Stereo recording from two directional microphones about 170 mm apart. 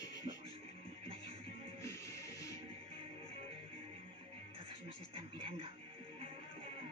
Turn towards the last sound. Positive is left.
turn(degrees=-35)  # may be behind; listen again after turning